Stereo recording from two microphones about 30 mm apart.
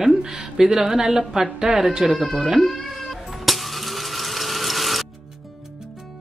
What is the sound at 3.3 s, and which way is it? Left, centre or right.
Ratchet, centre.